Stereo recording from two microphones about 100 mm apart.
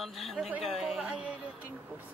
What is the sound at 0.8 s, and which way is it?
Speech, 10° right (ahead or behind).